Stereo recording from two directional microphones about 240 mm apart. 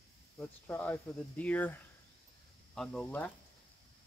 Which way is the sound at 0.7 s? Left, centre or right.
Centre.